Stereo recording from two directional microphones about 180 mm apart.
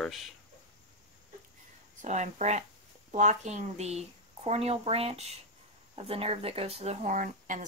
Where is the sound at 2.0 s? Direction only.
40° right (ahead or behind).